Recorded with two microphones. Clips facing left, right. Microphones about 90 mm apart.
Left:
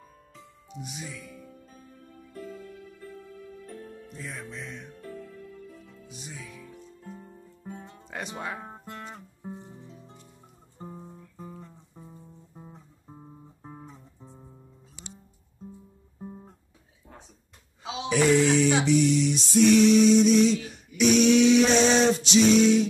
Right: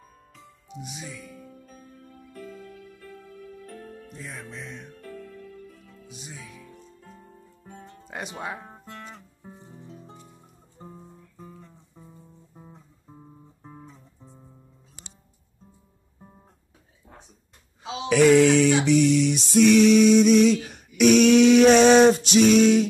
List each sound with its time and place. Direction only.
0.8 s speech: centre (ahead or behind)
4.1 s music: 5° right (ahead or behind)
6.0 s music: 5° right (ahead or behind)
7.6 s music: 25° left (ahead or behind)
8.6 s music: 10° left (ahead or behind)
10.9 s music: 15° left (ahead or behind)
12.5 s music: 5° left (ahead or behind)
13.1 s music: 15° left (ahead or behind)
18.0 s a sound: 75° right (ahead or behind)
18.9 s music: 70° right (ahead or behind)